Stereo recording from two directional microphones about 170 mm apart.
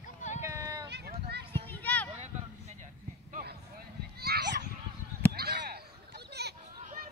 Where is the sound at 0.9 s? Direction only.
70° right (ahead or behind).